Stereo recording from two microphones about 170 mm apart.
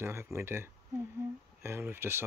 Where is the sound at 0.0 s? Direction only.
15° right (ahead or behind).